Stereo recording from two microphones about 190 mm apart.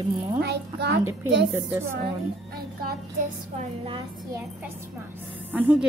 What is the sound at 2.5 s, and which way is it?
Music, 55° right (ahead or behind).